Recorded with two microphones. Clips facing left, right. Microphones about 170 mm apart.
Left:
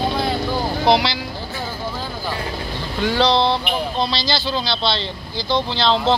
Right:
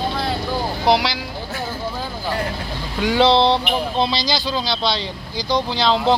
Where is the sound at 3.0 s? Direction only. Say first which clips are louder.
Right 2 dB; 15° right (ahead or behind).